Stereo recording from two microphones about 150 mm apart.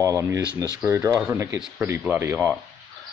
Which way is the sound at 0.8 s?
20° right (ahead or behind).